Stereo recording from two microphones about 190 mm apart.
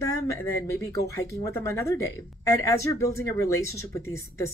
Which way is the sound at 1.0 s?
15° left (ahead or behind).